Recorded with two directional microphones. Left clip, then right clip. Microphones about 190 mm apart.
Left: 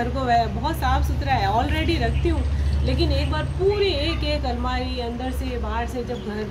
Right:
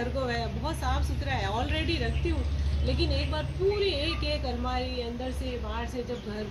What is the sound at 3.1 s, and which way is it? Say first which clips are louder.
Speech: left 6 dB; 25° left (ahead or behind).